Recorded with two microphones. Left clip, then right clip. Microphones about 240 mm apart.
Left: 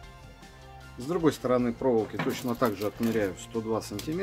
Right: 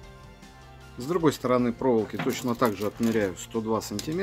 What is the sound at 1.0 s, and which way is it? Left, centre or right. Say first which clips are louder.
Speech: right 2 dB; right.